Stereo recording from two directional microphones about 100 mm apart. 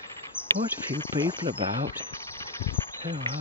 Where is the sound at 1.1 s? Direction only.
45° right (ahead or behind).